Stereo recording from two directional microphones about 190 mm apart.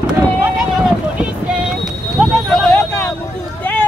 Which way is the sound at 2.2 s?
5° left (ahead or behind).